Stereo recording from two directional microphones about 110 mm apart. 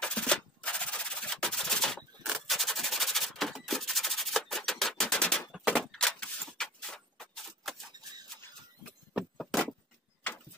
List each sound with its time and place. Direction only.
0.0 s machine gun: 10° left (ahead or behind)
2.2 s rub: centre (ahead or behind)
5.8 s a sound: 5° left (ahead or behind)
9.4 s vehicle: 5° left (ahead or behind)